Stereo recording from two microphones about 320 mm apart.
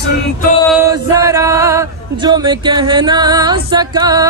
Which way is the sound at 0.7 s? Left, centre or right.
Centre.